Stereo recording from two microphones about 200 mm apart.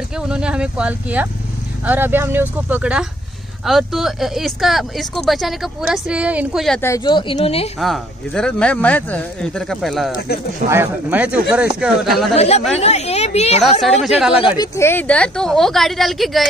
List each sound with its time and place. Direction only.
0.3 s speech: 5° right (ahead or behind)
6.8 s a woman's voice: 20° left (ahead or behind)
7.8 s speech: centre (ahead or behind)
10.1 s speech: 50° left (ahead or behind)
10.7 s speech: 10° right (ahead or behind)
12.4 s a woman's voice: 30° left (ahead or behind)
14.0 s speech: 5° right (ahead or behind)
14.4 s speech: 15° left (ahead or behind); by 16.4 s centre (ahead or behind)